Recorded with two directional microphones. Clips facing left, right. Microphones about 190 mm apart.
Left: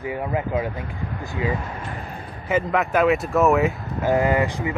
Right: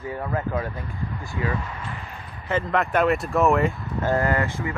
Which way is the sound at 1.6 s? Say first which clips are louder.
Left 3 dB; 40° left (ahead or behind).